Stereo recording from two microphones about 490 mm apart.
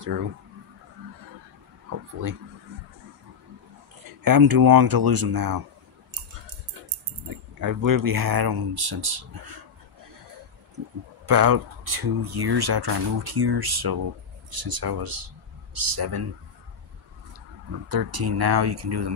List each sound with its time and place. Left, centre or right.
4.0 s speech: right
7.2 s speech: right
11.2 s speech: right
17.8 s speech: right